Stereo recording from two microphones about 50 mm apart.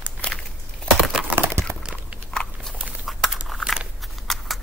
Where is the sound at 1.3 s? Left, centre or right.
Right.